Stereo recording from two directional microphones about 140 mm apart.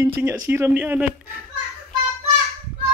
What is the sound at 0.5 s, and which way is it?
Speech, 15° right (ahead or behind).